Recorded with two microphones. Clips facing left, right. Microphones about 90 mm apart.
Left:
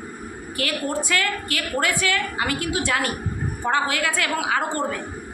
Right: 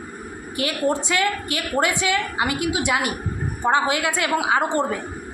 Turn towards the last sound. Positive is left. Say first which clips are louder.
# right 4 dB
turn(degrees=-20)  # may be behind; listen again after turning